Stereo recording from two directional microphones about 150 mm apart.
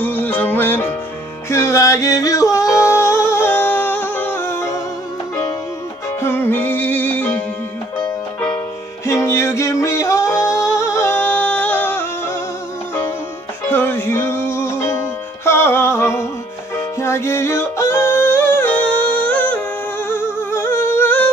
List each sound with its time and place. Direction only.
0.0 s music: 10° left (ahead or behind)
6.2 s music: 15° left (ahead or behind)
9.0 s music: 20° left (ahead or behind)
13.7 s music: 15° left (ahead or behind)
18.9 s music: 35° right (ahead or behind)
19.2 s music: 10° left (ahead or behind)
20.5 s humming: 15° left (ahead or behind)